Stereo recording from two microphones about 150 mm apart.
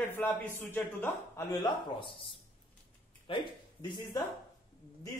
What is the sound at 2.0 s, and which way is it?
Speech, 35° left (ahead or behind).